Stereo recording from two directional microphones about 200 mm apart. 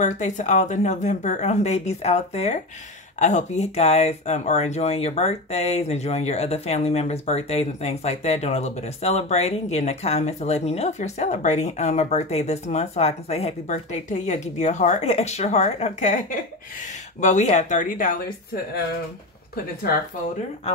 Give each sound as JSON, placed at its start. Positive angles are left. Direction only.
{"t": 0.0, "sound": "speech", "side_deg": 35}
{"t": 19.5, "sound": "speech", "side_deg": 50}